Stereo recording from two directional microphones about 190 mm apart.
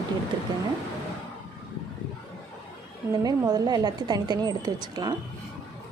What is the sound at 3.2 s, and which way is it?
A woman's voice, 20° right (ahead or behind).